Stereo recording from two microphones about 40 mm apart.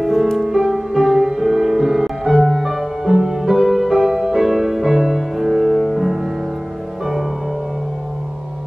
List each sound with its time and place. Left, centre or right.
0.0 s music: centre
3.6 s music: centre
3.9 s music: centre